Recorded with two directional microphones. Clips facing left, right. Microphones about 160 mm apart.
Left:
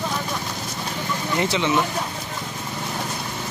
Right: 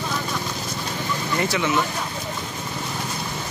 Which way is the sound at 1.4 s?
20° left (ahead or behind).